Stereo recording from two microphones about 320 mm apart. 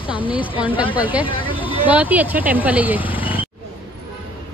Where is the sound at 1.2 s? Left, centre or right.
Centre.